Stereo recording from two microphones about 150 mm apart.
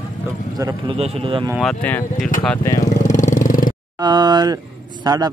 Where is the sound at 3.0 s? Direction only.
55° left (ahead or behind).